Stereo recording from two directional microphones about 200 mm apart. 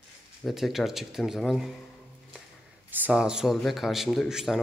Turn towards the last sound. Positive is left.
turn(degrees=0)  # may be behind; listen again after turning